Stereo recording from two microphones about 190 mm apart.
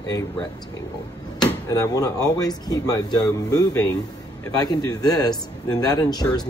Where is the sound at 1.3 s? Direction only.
20° left (ahead or behind).